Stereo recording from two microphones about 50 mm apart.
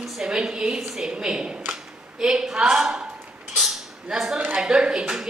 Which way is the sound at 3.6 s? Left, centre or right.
Centre.